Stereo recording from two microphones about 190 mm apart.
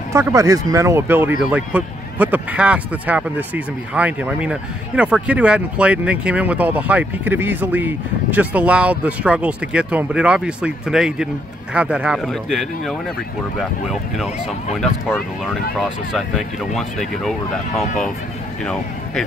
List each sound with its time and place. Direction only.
0.1 s speech: 15° right (ahead or behind); by 18.1 s centre (ahead or behind)